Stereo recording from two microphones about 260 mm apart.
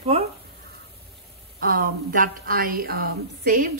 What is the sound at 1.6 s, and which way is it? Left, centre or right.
A woman's voice, right.